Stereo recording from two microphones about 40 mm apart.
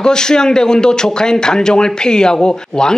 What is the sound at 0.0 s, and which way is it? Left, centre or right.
Speech, centre.